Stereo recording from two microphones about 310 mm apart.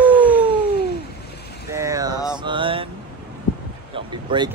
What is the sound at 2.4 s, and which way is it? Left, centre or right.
Speech, centre.